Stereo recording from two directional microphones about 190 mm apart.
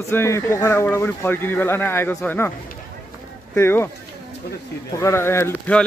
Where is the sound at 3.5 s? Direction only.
10° left (ahead or behind).